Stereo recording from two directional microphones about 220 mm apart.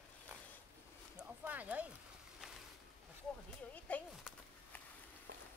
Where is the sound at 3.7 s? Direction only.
5° left (ahead or behind).